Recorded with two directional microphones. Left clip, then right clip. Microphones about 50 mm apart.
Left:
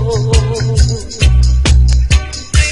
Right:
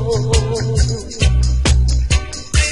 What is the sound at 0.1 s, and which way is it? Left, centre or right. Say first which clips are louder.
Music: left 1 dB; left.